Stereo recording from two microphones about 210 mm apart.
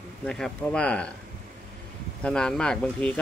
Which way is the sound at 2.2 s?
5° left (ahead or behind).